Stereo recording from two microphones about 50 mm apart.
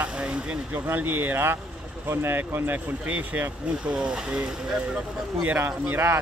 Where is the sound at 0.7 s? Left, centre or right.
Right.